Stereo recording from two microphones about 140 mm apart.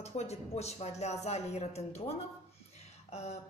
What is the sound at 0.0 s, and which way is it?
Speech, 50° left (ahead or behind).